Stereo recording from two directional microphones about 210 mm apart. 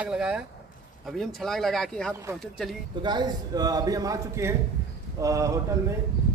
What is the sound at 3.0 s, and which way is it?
A man's voice, 20° right (ahead or behind).